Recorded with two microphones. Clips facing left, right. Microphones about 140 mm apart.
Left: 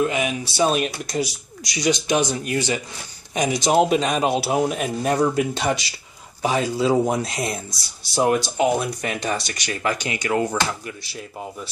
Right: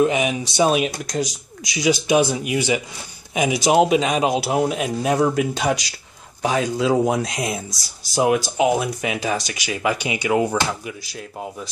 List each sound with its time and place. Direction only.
0.0 s speech: 20° right (ahead or behind)
0.7 s a man's voice: centre (ahead or behind)